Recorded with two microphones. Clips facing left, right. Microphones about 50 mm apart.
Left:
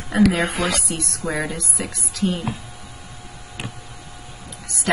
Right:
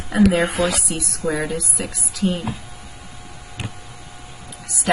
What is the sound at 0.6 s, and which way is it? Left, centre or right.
Speech, left.